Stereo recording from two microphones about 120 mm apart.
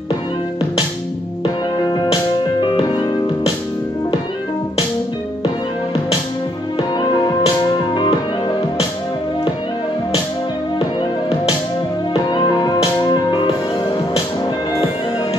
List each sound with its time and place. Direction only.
2.6 s music: 40° left (ahead or behind)
6.8 s music: 40° left (ahead or behind)
12.1 s music: 40° left (ahead or behind)